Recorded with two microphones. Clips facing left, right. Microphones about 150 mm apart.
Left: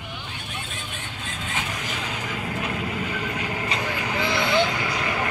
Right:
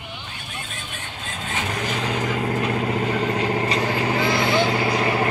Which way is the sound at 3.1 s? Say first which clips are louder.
Right 7 dB; 40° right (ahead or behind).